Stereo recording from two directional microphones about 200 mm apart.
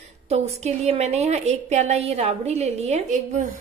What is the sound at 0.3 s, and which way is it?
A woman's voice, 35° right (ahead or behind).